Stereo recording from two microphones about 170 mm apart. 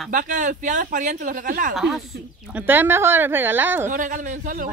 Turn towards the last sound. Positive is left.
turn(degrees=-50)  # may be behind; listen again after turning